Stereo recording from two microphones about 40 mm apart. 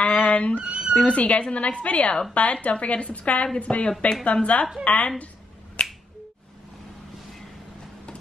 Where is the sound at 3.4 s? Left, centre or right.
Left.